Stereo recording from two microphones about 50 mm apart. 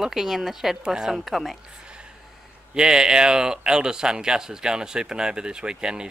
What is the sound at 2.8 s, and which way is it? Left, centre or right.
Speech, centre.